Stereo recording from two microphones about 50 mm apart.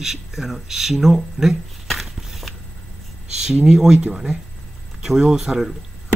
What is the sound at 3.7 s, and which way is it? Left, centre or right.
Speech, centre.